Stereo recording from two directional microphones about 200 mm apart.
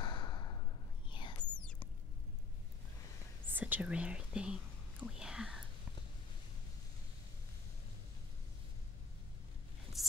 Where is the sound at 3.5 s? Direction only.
10° right (ahead or behind).